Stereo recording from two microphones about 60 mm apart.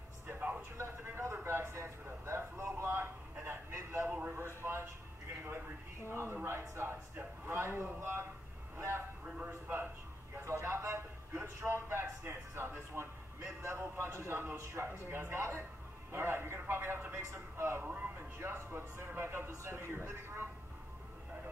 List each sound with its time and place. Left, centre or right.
0.3 s music: right
0.7 s a sound: right
6.0 s speech: right
6.7 s a sound: right
13.6 s a man's voice: right
16.1 s music: right
17.2 s speech: right
17.8 s a sound: right
18.4 s speech: right